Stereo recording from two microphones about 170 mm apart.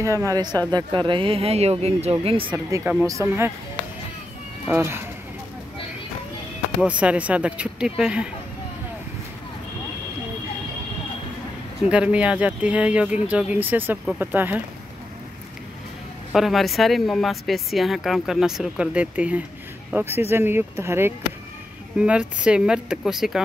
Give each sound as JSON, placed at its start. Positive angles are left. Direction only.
{"t": 0.0, "sound": "speech", "side_deg": -20}
{"t": 2.5, "sound": "speech", "side_deg": -20}
{"t": 4.6, "sound": "speech", "side_deg": -15}
{"t": 6.8, "sound": "speech", "side_deg": -5}
{"t": 11.9, "sound": "speech", "side_deg": -5}
{"t": 16.3, "sound": "speech", "side_deg": 0}